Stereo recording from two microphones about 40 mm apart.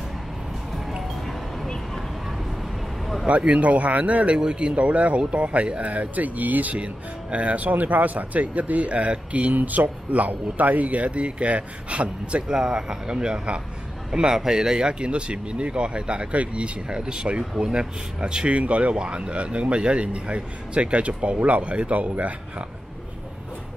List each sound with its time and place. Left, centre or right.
3.3 s speech: right
4.4 s speech: right
6.8 s speech: right
12.5 s speech: centre; by 22.3 s right